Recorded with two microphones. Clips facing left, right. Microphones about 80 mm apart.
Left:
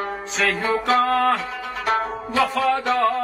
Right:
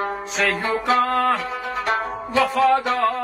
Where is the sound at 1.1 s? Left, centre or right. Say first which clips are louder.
Left 1 dB; centre.